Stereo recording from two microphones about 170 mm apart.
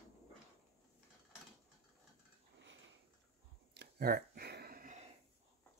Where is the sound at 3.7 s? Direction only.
80° right.